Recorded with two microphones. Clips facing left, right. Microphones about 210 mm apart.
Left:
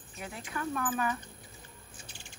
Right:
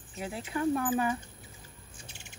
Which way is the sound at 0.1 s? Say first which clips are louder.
Right 5 dB; 25° right (ahead or behind).